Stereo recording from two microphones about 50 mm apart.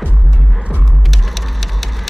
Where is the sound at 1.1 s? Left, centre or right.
Centre.